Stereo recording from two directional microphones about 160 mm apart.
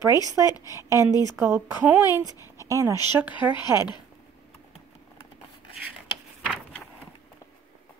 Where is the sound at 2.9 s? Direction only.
30° left (ahead or behind).